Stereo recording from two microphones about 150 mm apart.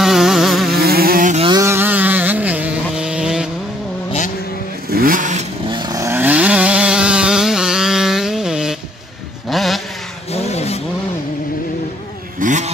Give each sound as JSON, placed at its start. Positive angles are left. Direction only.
{"t": 0.0, "sound": "a sound", "side_deg": 0}
{"t": 0.7, "sound": "insect", "side_deg": -90}
{"t": 1.5, "sound": "a sound", "side_deg": -20}
{"t": 4.8, "sound": "vehicle", "side_deg": -80}
{"t": 5.7, "sound": "chainsaw", "side_deg": -25}
{"t": 9.5, "sound": "vehicle", "side_deg": 0}
{"t": 10.3, "sound": "vehicle", "side_deg": 45}
{"t": 12.4, "sound": "vehicle", "side_deg": -55}